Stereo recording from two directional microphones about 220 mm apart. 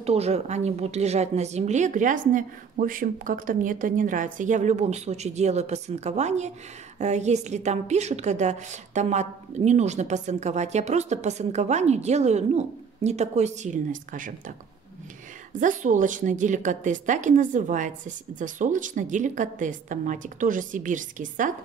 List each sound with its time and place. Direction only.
0.0 s a woman's voice: 30° right (ahead or behind)
15.6 s a woman's voice: 35° right (ahead or behind)